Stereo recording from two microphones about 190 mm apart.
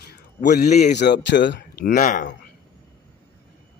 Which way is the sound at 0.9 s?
60° left (ahead or behind).